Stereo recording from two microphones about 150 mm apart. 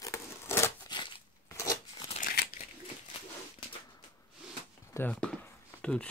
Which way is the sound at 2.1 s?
85° left.